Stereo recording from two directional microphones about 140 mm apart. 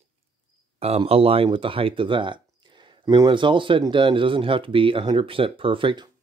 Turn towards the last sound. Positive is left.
turn(degrees=-35)  # may be behind; listen again after turning